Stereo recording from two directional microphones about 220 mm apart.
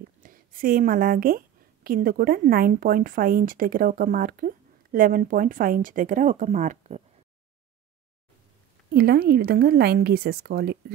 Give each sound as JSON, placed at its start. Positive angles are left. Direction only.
{"t": 0.2, "sound": "a woman's voice", "side_deg": -40}
{"t": 8.9, "sound": "a woman's voice", "side_deg": -45}